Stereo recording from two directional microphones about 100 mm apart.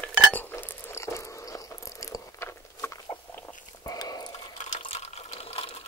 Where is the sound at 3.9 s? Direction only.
40° left (ahead or behind).